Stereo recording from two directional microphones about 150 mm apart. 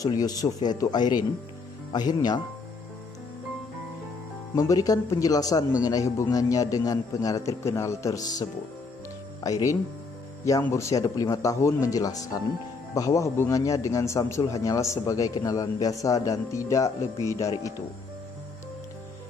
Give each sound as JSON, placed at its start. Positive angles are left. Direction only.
{"t": 0.0, "sound": "a man's voice", "side_deg": 25}
{"t": 4.6, "sound": "a man's voice", "side_deg": 25}